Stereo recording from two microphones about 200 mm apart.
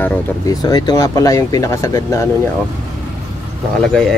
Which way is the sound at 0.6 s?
20° left (ahead or behind).